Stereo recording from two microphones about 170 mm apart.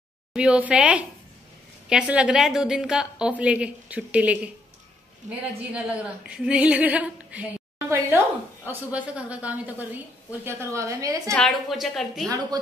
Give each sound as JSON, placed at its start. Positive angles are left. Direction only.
{"t": 0.3, "sound": "speech", "side_deg": -5}
{"t": 11.3, "sound": "a woman's voice", "side_deg": 0}